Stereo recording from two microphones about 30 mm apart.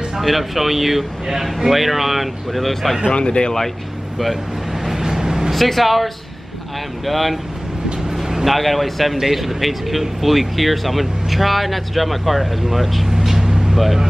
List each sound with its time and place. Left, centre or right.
0.2 s speech: centre
3.1 s speech: left
5.0 s vehicle: centre
5.5 s speech: centre
7.1 s speech: centre
8.5 s speech: centre
13.1 s vehicle: centre